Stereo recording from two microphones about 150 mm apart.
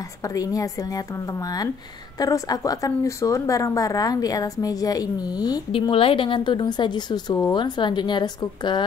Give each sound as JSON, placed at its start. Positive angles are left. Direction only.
{"t": 0.3, "sound": "speech", "side_deg": 25}
{"t": 2.1, "sound": "speech", "side_deg": 25}